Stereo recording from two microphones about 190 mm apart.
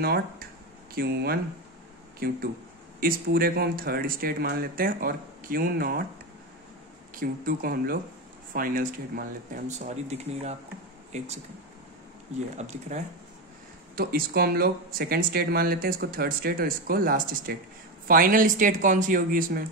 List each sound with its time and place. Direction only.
0.0 s speech: 55° right (ahead or behind)
7.2 s speech: 50° right (ahead or behind)
12.5 s speech: 35° right (ahead or behind)
13.9 s speech: 50° right (ahead or behind)